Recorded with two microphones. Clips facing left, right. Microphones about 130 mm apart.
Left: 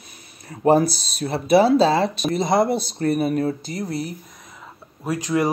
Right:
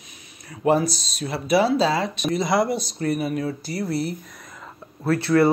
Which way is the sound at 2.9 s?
50° left (ahead or behind).